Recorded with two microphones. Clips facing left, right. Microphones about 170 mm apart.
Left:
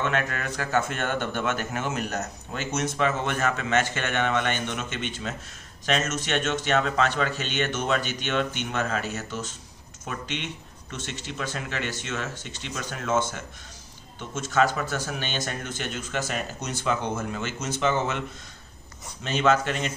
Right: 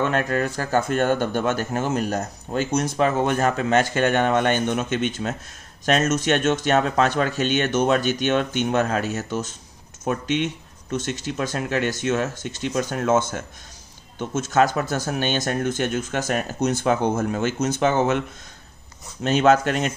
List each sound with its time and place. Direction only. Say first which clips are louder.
0.0 s speech: right 6 dB; 35° right (ahead or behind)
14.3 s speech: right 4 dB; 45° right (ahead or behind)
19.2 s speech: right 5 dB; 45° right (ahead or behind)